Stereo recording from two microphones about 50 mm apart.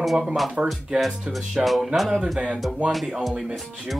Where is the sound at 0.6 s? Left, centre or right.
Right.